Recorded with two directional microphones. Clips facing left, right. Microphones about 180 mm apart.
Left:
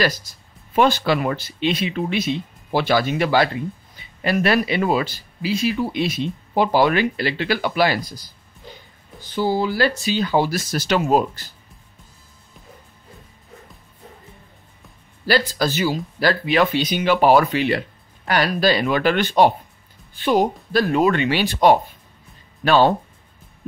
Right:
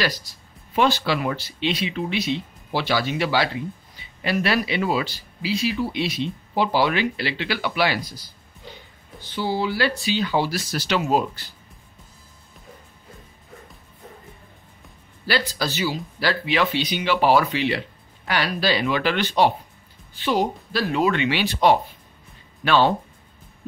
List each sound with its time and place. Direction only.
0.0 s speech: 45° left (ahead or behind)
9.3 s speech: 45° left (ahead or behind)
15.2 s speech: 45° left (ahead or behind)